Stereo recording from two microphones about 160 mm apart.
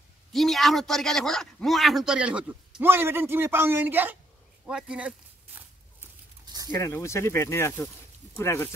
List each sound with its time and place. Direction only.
0.3 s a man's voice: centre (ahead or behind)
4.6 s walk: 5° right (ahead or behind)
6.4 s a sound: 25° right (ahead or behind)
6.8 s speech: 15° left (ahead or behind)